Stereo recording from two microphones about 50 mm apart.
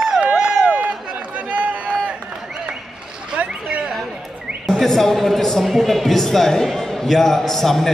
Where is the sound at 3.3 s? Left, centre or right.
Right.